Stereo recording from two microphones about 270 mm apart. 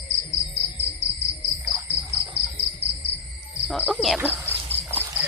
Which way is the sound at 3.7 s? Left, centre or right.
Centre.